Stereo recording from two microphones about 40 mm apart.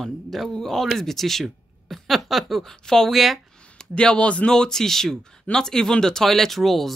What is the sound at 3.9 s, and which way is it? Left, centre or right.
Speech, left.